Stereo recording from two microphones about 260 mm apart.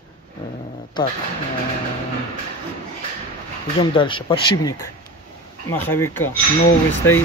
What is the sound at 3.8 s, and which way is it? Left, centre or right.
A man's voice, centre.